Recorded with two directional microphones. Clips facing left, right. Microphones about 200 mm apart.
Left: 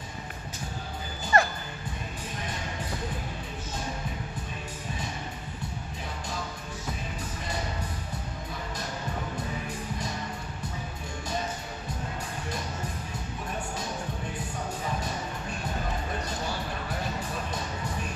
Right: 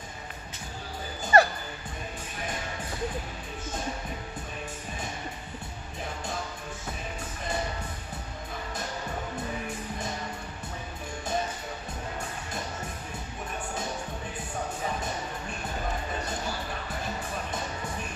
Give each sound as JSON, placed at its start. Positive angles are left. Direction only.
{"t": 1.2, "sound": "music", "side_deg": -35}